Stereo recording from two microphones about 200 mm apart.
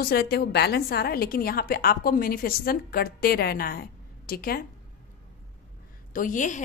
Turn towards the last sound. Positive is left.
turn(degrees=40)  # may be behind; listen again after turning